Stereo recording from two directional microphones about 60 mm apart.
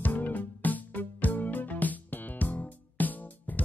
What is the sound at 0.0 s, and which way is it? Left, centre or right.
Music, left.